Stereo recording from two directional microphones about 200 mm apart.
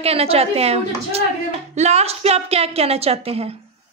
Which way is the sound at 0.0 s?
30° right (ahead or behind).